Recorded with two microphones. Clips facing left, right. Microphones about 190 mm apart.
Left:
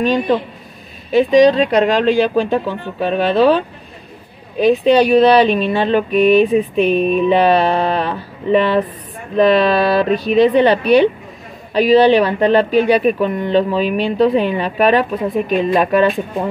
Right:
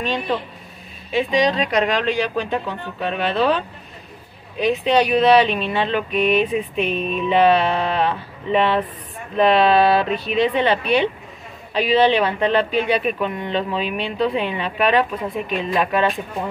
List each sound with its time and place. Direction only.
0.0 s speech: 40° left (ahead or behind)
1.5 s speech: 35° left (ahead or behind)
4.6 s speech: 35° left (ahead or behind)